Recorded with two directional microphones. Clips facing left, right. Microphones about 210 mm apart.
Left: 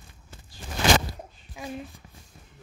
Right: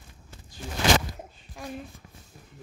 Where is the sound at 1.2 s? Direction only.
Centre (ahead or behind).